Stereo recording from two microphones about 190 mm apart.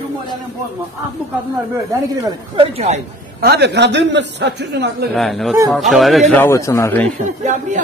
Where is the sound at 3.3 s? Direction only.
55° right (ahead or behind).